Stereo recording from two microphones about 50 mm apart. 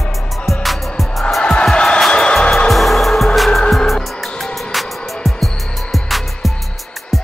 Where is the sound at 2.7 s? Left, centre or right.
Centre.